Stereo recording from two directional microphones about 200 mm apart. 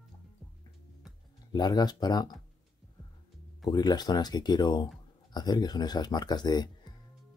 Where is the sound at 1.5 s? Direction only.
20° left (ahead or behind).